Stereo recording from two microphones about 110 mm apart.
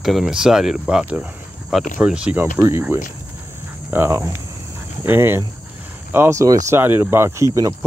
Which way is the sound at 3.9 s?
20° right (ahead or behind).